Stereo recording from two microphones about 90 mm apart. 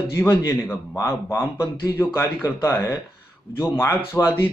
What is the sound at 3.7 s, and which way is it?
Speech, 25° left (ahead or behind).